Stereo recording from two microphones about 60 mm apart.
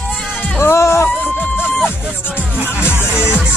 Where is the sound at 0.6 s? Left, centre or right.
Left.